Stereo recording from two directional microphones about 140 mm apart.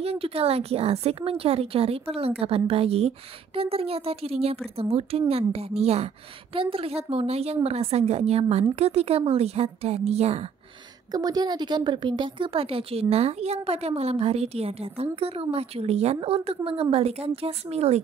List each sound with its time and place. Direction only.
0.0 s speech: 45° right (ahead or behind)
11.1 s speech: 30° right (ahead or behind); by 18.0 s 50° right (ahead or behind)